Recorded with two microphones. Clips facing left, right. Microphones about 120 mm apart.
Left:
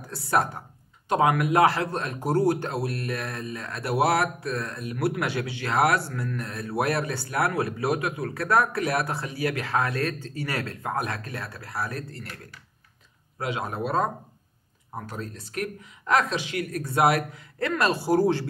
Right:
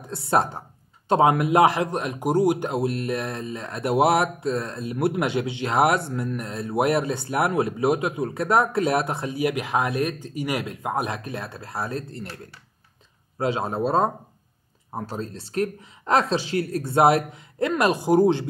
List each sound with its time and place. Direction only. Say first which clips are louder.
0.1 s speech: right 2 dB; 25° right (ahead or behind)
13.4 s speech: right 5 dB; 30° right (ahead or behind)